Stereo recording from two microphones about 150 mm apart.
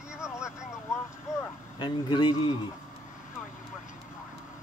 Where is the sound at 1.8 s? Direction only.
30° left (ahead or behind).